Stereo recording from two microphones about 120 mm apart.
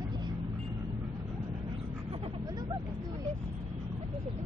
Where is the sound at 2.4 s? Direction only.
35° right (ahead or behind).